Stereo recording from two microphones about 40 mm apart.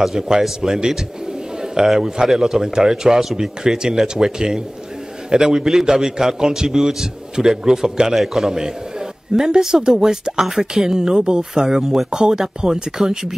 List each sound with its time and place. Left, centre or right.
0.0 s a man's voice: centre
8.1 s a man's voice: centre